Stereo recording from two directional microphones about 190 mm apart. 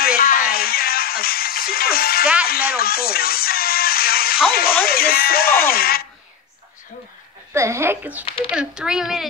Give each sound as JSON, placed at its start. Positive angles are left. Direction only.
{"t": 0.0, "sound": "music", "side_deg": 50}
{"t": 4.5, "sound": "speech", "side_deg": 50}
{"t": 7.5, "sound": "a woman's voice", "side_deg": -15}